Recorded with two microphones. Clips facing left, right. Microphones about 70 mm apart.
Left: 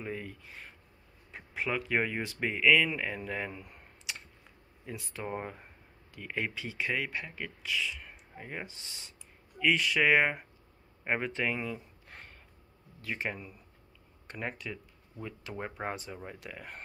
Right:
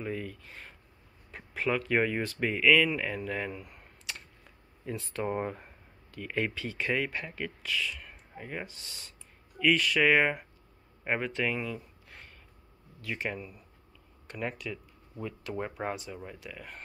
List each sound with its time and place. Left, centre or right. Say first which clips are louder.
0.0 s speech: right 3 dB; centre
0.5 s a sound: right 1 dB; centre
1.3 s speech: right 3 dB; centre
4.9 s speech: right 5 dB; centre
6.1 s speech: right 3 dB; centre
7.6 s speech: left 1 dB; centre
12.1 s a sound: left 2 dB; left
13.0 s speech: right 1 dB; left
13.3 s speech: right 2 dB; centre
14.2 s speech: right 2 dB; left
15.5 s speech: right 2 dB; centre
16.4 s speech: even; left